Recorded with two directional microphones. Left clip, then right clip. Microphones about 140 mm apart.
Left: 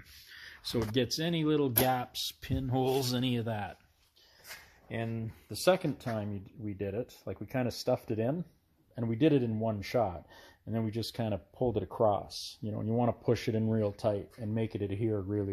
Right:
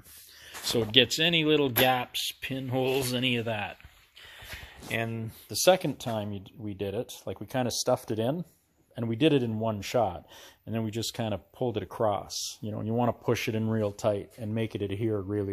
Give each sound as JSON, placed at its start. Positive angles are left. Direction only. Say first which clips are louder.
{"t": 0.7, "sound": "speech", "louder": "right 9 dB", "side_deg": 10}
{"t": 2.5, "sound": "speech", "louder": "right 2 dB", "side_deg": 45}
{"t": 4.8, "sound": "speech", "louder": "right 6 dB", "side_deg": -10}